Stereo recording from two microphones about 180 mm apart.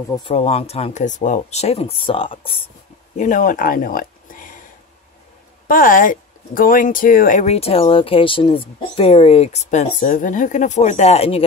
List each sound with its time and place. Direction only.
0.2 s speech: 35° left (ahead or behind)
3.2 s speech: 45° left (ahead or behind)
5.7 s speech: 50° left (ahead or behind)